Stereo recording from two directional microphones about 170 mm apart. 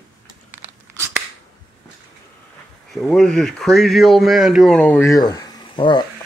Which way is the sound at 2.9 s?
Centre (ahead or behind).